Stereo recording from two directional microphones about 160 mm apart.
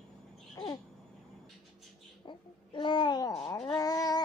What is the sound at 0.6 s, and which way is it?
Babbling, 20° left (ahead or behind).